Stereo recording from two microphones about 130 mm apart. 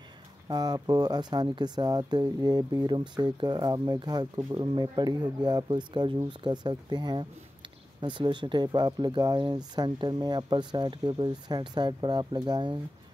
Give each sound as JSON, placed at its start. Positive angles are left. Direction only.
{"t": 0.5, "sound": "speech", "side_deg": -30}